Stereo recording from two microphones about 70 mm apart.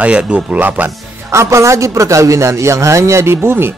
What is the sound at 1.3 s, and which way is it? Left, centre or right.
A man's voice, right.